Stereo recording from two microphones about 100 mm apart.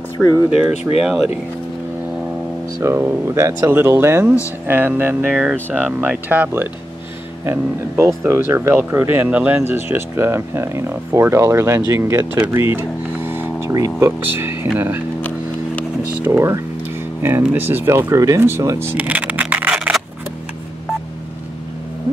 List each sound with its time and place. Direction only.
0.2 s speech: centre (ahead or behind)
2.8 s speech: 25° right (ahead or behind)
16.3 s speech: 30° right (ahead or behind); by 19.9 s 15° right (ahead or behind)